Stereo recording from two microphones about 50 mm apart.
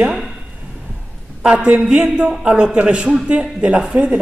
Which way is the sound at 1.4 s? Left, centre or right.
Right.